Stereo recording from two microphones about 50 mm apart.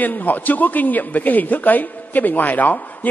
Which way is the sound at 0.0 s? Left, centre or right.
Left.